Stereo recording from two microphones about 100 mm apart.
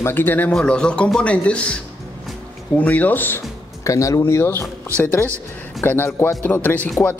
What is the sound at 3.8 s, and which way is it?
A man's voice, 35° left (ahead or behind).